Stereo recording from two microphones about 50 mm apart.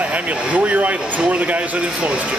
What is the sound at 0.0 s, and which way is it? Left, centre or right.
Speech, right.